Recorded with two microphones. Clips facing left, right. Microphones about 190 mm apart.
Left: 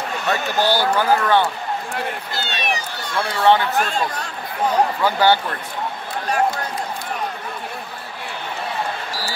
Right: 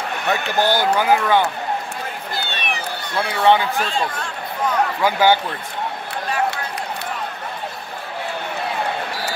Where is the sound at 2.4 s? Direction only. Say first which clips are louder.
Left 3 dB; 60° right (ahead or behind).